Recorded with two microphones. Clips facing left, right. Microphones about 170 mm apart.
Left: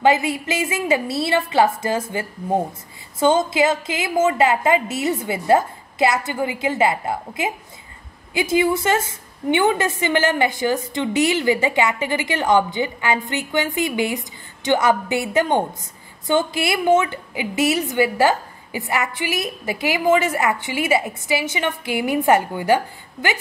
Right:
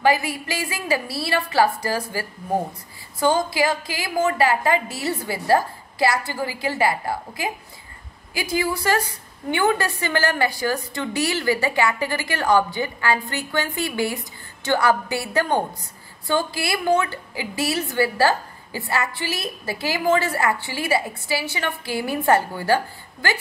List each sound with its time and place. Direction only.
0.0 s a woman's voice: 20° left (ahead or behind)